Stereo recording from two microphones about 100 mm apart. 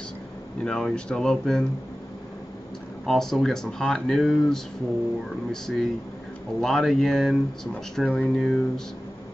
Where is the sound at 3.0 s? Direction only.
5° left (ahead or behind).